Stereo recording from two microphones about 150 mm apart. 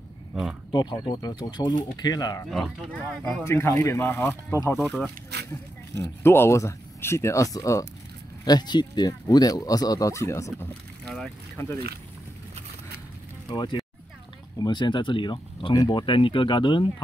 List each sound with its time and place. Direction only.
0.3 s speech: centre (ahead or behind)
0.7 s speech: 25° left (ahead or behind)
2.5 s speech: 5° left (ahead or behind)
4.7 s speech: 5° left (ahead or behind)
5.5 s speech: 15° left (ahead or behind)
11.1 s boat: centre (ahead or behind)
13.5 s speech: 25° left (ahead or behind)